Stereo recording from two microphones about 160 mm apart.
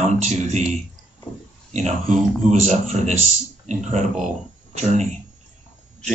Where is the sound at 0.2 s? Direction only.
45° right (ahead or behind).